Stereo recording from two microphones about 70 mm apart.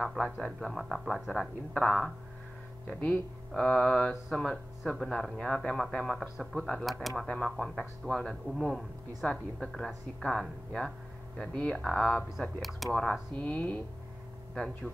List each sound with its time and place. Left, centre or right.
0.0 s speech: centre
3.5 s speech: centre
8.5 s speech: centre
9.2 s speech: centre
12.8 s speech: centre
13.4 s speech: left
14.5 s speech: centre